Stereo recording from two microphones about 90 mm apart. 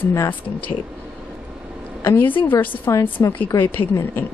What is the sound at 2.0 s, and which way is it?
Speech, 20° left (ahead or behind).